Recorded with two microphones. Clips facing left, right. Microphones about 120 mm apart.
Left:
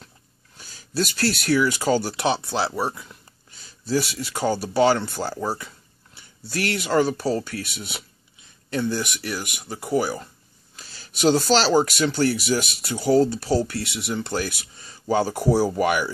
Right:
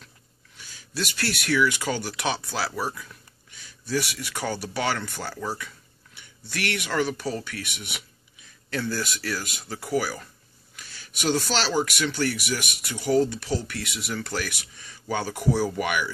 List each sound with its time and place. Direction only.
0.6 s speech: 40° left (ahead or behind)
8.6 s speech: 20° left (ahead or behind); by 16.1 s 35° left (ahead or behind)